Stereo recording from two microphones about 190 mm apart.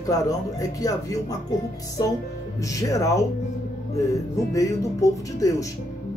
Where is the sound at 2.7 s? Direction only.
15° left (ahead or behind).